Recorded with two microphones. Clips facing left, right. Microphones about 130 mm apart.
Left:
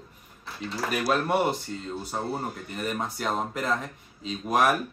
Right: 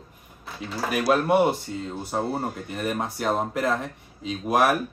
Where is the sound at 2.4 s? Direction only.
45° right (ahead or behind).